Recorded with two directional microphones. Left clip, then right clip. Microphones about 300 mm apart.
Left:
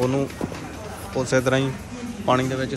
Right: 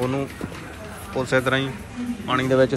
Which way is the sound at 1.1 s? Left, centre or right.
Centre.